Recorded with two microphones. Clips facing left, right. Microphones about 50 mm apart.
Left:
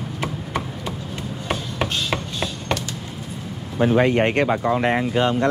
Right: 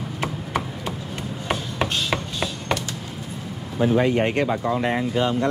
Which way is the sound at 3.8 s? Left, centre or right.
Left.